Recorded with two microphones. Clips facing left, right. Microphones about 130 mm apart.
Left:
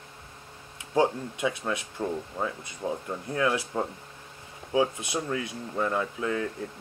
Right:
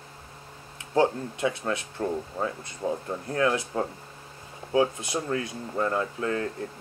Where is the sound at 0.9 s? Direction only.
15° left (ahead or behind).